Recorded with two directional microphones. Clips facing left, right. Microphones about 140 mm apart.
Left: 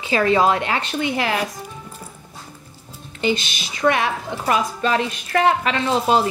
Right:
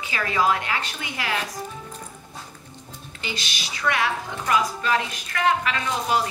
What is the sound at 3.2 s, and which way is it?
A woman's voice, 20° left (ahead or behind).